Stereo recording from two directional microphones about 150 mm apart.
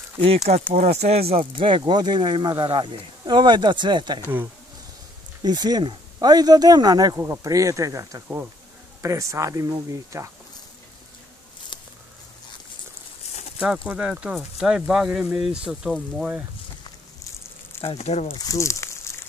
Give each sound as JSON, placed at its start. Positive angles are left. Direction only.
{"t": 0.2, "sound": "speech", "side_deg": -45}
{"t": 1.3, "sound": "speech", "side_deg": -35}
{"t": 5.4, "sound": "speech", "side_deg": -30}
{"t": 13.6, "sound": "speech", "side_deg": -5}
{"t": 17.2, "sound": "a sound", "side_deg": 20}
{"t": 17.8, "sound": "speech", "side_deg": 45}
{"t": 18.4, "sound": "speech", "side_deg": 20}